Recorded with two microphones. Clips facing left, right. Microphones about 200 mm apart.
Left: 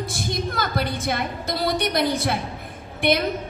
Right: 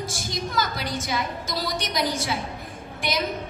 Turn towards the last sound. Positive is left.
turn(degrees=60)  # may be behind; listen again after turning